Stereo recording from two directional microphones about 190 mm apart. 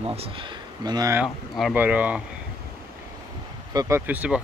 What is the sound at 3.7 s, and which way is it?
Speech, 15° right (ahead or behind).